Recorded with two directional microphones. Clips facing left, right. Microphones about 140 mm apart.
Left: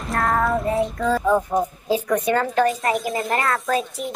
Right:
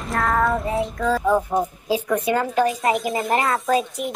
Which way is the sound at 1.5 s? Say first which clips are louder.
Left 1 dB; 10° right (ahead or behind).